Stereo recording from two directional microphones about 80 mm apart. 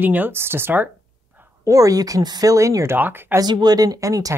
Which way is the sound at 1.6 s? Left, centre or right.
Right.